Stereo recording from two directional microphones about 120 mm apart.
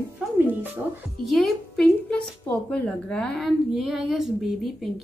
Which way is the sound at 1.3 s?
5° left (ahead or behind).